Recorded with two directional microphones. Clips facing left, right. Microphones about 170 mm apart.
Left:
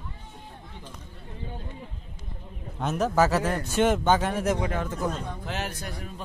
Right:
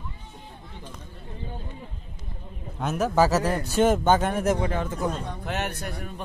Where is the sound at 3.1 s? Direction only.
35° right (ahead or behind).